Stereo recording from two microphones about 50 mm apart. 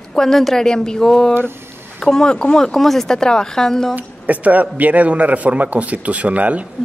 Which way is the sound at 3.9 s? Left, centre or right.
Right.